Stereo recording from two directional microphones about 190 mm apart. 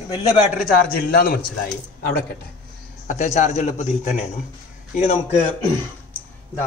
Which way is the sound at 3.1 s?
40° left (ahead or behind).